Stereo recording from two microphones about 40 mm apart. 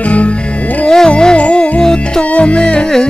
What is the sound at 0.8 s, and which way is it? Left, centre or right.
Music, centre.